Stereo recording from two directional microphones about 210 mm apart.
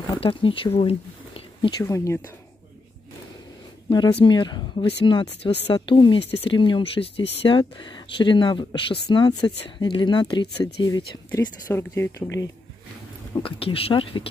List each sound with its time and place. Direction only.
0.1 s speech: 25° left (ahead or behind)
1.8 s speech: 15° left (ahead or behind)
3.9 s speech: 20° left (ahead or behind)
13.4 s speech: 25° left (ahead or behind)